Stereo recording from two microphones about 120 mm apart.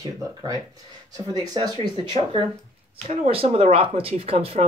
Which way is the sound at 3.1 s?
55° right (ahead or behind).